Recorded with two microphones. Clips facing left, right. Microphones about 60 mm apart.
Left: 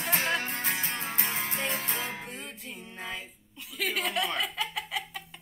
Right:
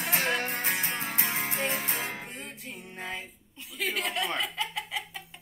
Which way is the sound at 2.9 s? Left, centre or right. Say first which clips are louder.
Right 1 dB; right.